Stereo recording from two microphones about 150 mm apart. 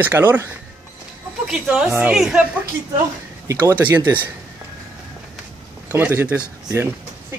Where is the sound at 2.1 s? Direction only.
5° right (ahead or behind).